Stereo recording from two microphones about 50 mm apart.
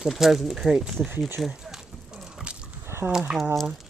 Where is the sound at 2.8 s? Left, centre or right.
Right.